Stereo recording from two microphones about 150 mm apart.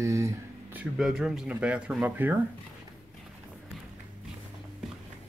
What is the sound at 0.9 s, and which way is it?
Speech, 5° right (ahead or behind).